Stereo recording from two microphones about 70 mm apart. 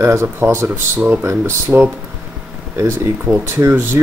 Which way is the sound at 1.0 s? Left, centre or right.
Right.